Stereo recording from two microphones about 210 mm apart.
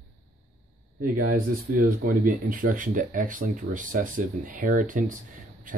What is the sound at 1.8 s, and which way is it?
Speech, 40° right (ahead or behind).